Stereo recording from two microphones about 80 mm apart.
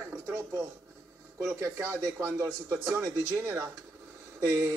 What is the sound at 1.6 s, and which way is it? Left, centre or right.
Speech, right.